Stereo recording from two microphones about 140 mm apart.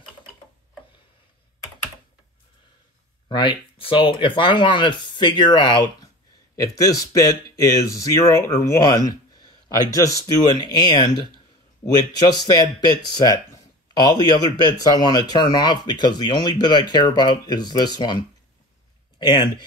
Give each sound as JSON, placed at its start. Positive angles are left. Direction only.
{"t": 3.3, "sound": "speech", "side_deg": 35}